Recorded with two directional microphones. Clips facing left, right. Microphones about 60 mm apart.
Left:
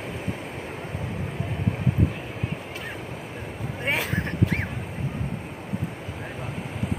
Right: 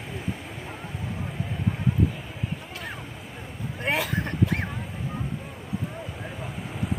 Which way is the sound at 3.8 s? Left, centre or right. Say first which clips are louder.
Even; left.